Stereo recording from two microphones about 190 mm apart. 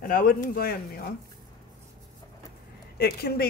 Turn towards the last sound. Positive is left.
turn(degrees=55)  # may be behind; listen again after turning